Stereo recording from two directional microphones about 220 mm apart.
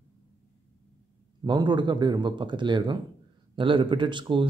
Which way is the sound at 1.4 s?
20° right (ahead or behind).